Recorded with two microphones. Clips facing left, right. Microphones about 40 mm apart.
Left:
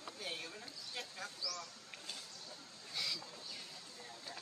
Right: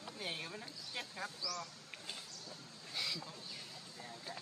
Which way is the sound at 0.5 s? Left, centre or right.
Centre.